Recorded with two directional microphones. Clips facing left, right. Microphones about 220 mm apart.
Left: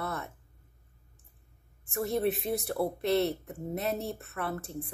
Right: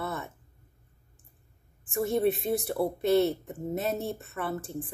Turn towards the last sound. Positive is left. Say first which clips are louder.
# right 2 dB
turn(degrees=0)  # may be behind; listen again after turning